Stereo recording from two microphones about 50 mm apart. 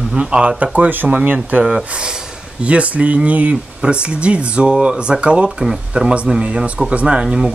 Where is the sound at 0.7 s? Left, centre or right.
Right.